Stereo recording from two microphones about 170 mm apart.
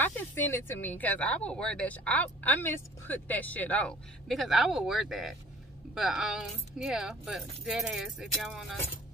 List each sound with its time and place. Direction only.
0.0 s speech: 10° left (ahead or behind)